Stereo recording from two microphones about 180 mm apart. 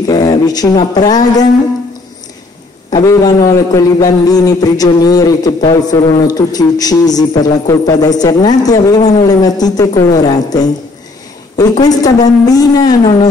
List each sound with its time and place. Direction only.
0.0 s a man's voice: 20° left (ahead or behind)
2.9 s a man's voice: 20° left (ahead or behind)